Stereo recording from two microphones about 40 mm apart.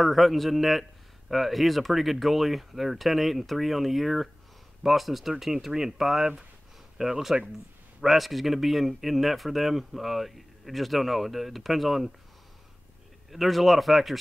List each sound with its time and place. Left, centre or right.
0.0 s speech: centre
13.3 s speech: centre